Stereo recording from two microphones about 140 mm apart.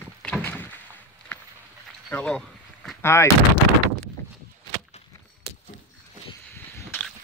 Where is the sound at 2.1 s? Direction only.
5° left (ahead or behind).